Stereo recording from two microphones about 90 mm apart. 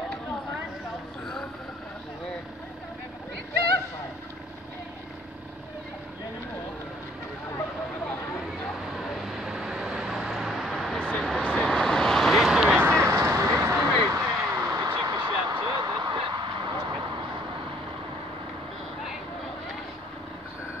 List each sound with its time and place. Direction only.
1.2 s vehicle: 5° left (ahead or behind)
8.9 s vehicle: centre (ahead or behind)
12.7 s vehicle: 25° right (ahead or behind)
15.0 s a sound: 50° right (ahead or behind)